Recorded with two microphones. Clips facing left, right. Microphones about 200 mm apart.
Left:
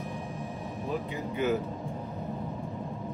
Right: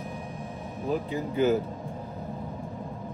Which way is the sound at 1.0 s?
30° right (ahead or behind).